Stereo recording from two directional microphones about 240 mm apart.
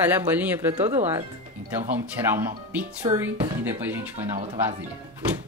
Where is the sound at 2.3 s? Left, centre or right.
Centre.